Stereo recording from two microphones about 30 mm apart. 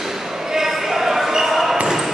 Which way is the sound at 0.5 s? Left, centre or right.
Centre.